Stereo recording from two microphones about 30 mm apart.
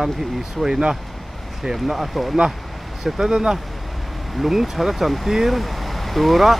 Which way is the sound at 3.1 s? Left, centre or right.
Right.